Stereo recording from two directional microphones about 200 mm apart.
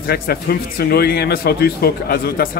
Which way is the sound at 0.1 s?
50° left (ahead or behind).